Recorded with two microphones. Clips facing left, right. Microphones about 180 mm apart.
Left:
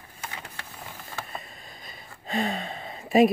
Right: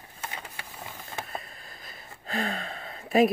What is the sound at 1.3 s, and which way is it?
Speech, centre (ahead or behind).